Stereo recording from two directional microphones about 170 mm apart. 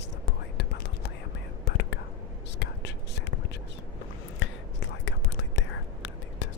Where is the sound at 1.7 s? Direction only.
90° left.